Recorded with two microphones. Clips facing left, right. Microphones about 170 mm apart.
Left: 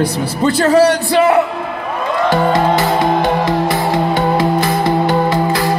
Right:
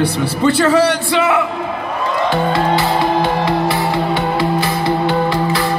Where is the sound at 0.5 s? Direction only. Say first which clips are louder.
Left 5 dB; 40° left (ahead or behind).